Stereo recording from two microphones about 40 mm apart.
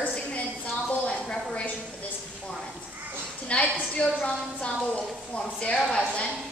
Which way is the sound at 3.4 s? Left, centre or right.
Left.